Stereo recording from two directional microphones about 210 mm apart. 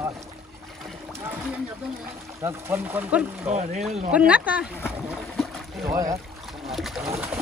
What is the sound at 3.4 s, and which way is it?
Speech, 35° right (ahead or behind).